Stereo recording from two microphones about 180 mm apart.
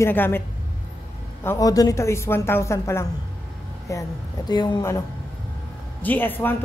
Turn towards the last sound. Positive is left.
turn(degrees=10)  # may be behind; listen again after turning